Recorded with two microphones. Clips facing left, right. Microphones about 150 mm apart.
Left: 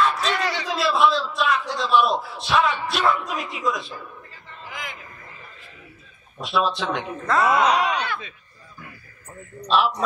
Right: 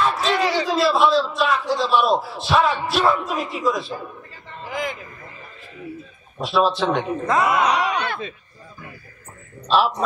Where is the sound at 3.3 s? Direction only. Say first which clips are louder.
Right 4 dB; 30° right (ahead or behind).